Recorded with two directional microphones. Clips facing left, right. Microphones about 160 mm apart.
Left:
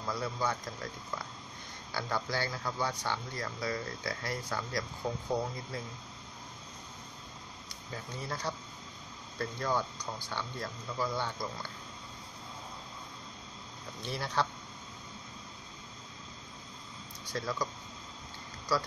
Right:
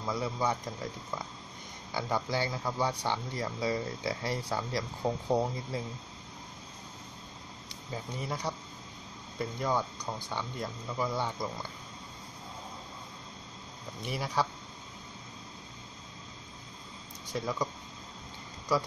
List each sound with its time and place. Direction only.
0.0 s speech: 15° right (ahead or behind)
2.0 s speech: 20° right (ahead or behind)
7.9 s speech: 15° right (ahead or behind)
14.0 s speech: 10° right (ahead or behind)
17.3 s speech: 20° right (ahead or behind)